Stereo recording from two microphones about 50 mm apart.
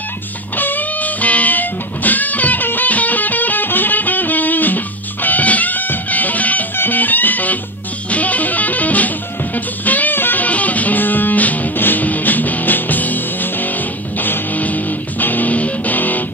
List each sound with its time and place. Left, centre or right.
0.6 s music: left